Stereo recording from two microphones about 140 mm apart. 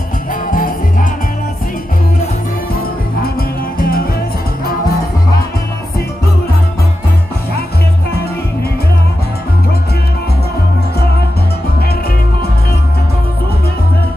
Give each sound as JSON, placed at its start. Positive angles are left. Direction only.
{"t": 0.3, "sound": "music", "side_deg": 80}
{"t": 3.3, "sound": "music", "side_deg": 90}